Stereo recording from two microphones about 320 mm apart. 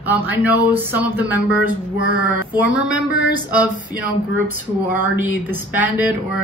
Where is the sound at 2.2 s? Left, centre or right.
Centre.